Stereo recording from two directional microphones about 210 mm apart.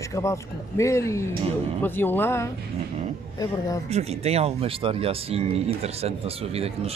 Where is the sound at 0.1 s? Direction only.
15° left (ahead or behind).